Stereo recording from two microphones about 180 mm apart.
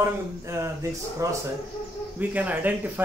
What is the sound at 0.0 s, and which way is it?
Speech, 15° right (ahead or behind).